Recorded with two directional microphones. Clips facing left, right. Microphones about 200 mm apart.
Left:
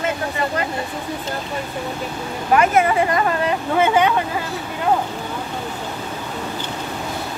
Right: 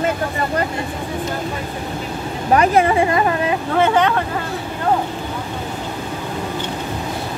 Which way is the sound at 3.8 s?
5° left (ahead or behind).